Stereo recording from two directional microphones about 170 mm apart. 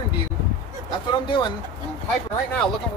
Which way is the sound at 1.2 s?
25° left (ahead or behind).